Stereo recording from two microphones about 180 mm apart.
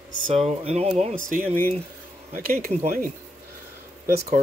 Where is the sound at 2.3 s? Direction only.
55° right (ahead or behind).